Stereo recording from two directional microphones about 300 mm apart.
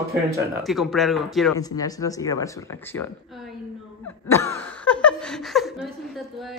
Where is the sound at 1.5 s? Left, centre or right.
Centre.